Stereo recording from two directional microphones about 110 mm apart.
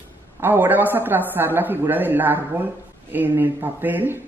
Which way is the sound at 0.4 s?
20° right (ahead or behind).